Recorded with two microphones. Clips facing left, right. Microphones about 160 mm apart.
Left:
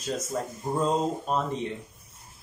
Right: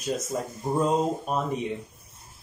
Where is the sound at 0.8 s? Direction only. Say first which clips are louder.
Right 1 dB; 10° right (ahead or behind).